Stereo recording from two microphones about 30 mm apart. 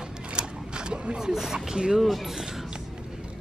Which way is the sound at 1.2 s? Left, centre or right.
Centre.